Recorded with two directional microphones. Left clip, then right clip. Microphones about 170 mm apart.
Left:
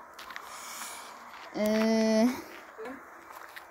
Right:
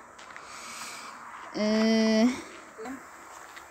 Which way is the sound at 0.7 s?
15° right (ahead or behind).